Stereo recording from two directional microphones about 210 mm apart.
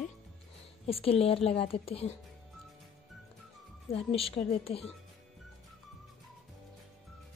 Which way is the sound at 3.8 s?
25° left (ahead or behind).